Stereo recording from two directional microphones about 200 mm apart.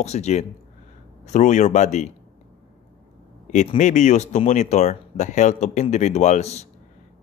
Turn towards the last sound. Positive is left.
turn(degrees=35)  # may be behind; listen again after turning